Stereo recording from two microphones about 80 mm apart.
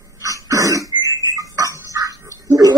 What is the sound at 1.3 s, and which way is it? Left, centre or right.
Music, right.